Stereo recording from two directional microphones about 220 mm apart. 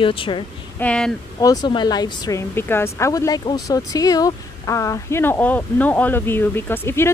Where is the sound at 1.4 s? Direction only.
20° left (ahead or behind).